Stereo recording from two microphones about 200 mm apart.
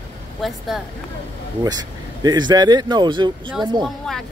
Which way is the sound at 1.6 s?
20° right (ahead or behind).